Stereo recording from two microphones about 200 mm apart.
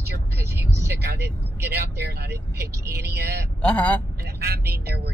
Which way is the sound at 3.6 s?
5° left (ahead or behind).